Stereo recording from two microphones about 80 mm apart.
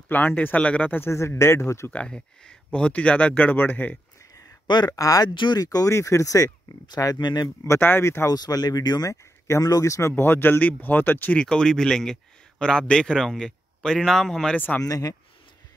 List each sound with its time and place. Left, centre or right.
0.1 s speech: left
1.1 s speech: left
1.9 s a man's voice: centre
4.6 s speech: left
4.9 s speech: left
5.3 s speech: left
5.6 s speech: left
7.2 s speech: left
7.4 s speech: left
8.3 s speech: left
9.1 s speech: left
11.3 s a man's voice: centre
14.8 s speech: left